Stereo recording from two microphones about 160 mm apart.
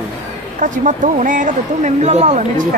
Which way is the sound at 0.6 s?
50° right (ahead or behind).